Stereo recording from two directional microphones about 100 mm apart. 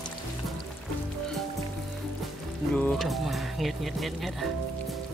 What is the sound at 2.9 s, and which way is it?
Music, centre (ahead or behind).